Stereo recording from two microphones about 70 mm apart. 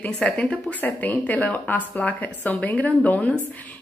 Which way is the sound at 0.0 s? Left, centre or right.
Left.